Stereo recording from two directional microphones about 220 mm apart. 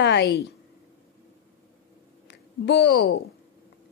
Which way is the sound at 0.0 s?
50° left (ahead or behind).